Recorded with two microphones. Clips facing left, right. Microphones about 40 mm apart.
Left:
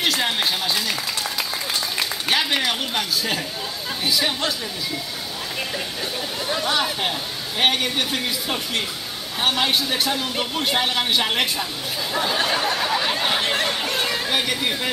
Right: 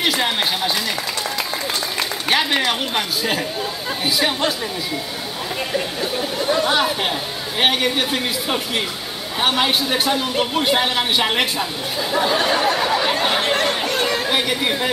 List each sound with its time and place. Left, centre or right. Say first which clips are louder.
0.0 s music: right 2 dB; centre
2.0 s speech: right 3 dB; centre
6.5 s speech: right 4 dB; centre
12.1 s a sound: right 4 dB; centre
13.8 s chatter: right 4 dB; centre